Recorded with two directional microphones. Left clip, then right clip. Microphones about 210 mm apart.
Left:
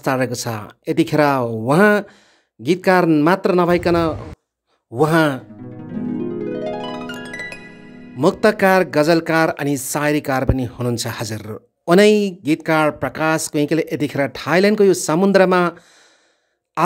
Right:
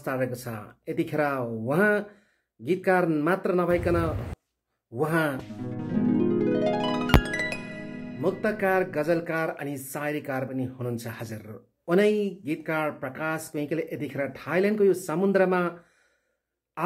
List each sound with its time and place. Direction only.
0.0 s speech: 50° left (ahead or behind)
5.6 s harp: centre (ahead or behind)
8.2 s speech: 50° left (ahead or behind)
16.8 s speech: 50° left (ahead or behind)